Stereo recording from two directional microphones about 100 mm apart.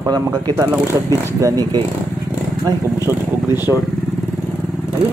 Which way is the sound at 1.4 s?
40° right (ahead or behind).